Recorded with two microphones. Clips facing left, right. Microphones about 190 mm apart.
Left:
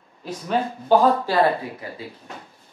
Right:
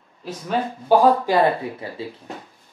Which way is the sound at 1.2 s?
20° right (ahead or behind).